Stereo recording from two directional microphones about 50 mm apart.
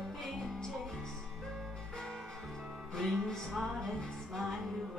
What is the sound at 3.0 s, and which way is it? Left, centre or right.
Music, centre.